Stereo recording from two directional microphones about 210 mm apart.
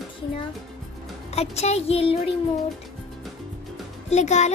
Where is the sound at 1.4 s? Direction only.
30° left (ahead or behind).